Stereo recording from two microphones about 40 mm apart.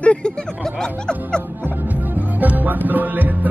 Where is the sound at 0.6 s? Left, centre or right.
Centre.